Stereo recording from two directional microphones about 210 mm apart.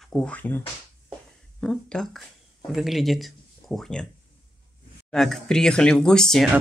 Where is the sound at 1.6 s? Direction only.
5° left (ahead or behind).